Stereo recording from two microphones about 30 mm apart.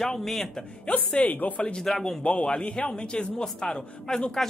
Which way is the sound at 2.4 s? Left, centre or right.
Left.